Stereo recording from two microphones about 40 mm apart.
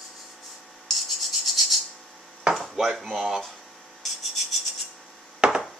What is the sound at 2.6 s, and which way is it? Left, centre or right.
Dishes, centre.